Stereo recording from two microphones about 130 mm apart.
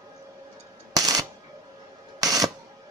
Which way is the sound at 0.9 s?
30° right (ahead or behind).